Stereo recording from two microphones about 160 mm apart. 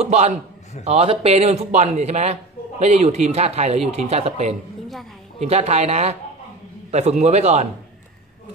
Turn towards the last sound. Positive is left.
turn(degrees=-45)  # may be behind; listen again after turning